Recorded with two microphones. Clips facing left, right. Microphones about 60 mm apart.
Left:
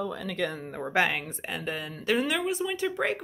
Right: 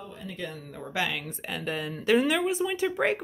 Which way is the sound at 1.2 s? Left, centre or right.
Centre.